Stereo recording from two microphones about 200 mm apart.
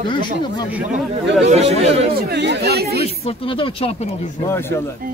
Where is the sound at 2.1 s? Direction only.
55° right (ahead or behind).